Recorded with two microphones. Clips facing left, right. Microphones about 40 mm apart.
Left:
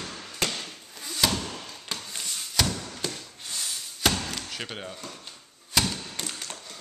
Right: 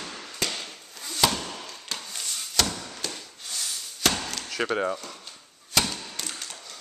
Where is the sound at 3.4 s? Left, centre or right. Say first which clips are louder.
Even; left.